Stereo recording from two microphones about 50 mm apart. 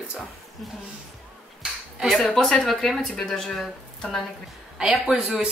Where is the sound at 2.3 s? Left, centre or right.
Centre.